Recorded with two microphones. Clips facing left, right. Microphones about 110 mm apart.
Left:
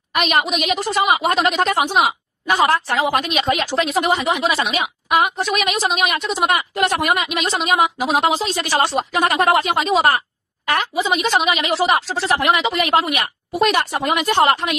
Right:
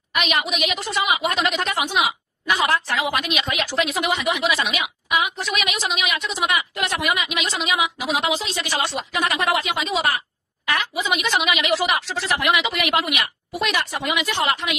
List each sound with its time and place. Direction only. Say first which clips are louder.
0.1 s a woman's voice: left 5 dB; 45° left (ahead or behind)
5.1 s a woman's voice: left 6 dB; 45° left (ahead or behind)